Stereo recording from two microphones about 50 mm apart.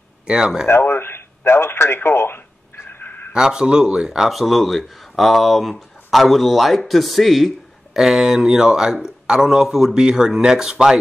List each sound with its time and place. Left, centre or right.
0.3 s speech: centre
0.7 s a sound: left
3.3 s speech: centre